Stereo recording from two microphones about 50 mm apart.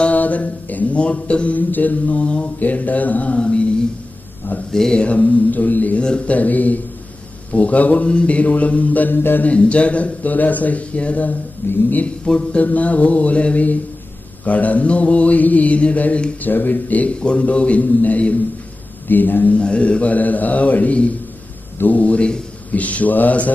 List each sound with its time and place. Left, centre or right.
0.1 s mantra: left
1.7 s mantra: left
3.3 s mantra: centre
4.5 s mantra: left
5.9 s mantra: left
9.5 s mantra: left
11.6 s speech: left
12.4 s mantra: left
16.4 s mantra: left
19.5 s mantra: left